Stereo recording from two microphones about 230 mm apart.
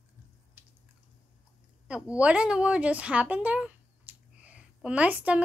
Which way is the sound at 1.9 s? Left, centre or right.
Centre.